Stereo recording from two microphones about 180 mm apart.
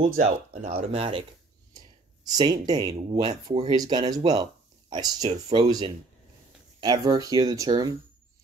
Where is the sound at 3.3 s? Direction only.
35° right (ahead or behind).